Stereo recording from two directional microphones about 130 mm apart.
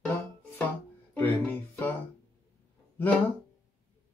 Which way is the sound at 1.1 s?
15° left (ahead or behind).